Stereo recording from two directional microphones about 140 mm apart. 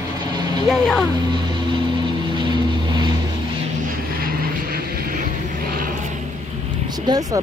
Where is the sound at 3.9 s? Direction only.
90° right.